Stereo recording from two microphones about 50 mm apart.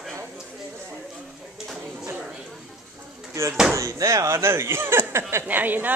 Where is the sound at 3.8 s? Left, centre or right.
Right.